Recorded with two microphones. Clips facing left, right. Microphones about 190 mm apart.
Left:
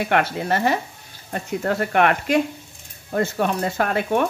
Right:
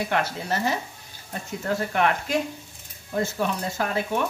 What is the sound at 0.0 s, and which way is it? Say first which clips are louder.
Speech: left 5 dB; 65° left (ahead or behind).